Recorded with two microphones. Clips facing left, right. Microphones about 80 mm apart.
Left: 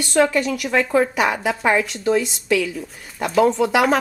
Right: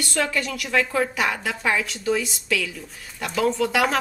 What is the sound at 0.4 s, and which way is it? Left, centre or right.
Speech, centre.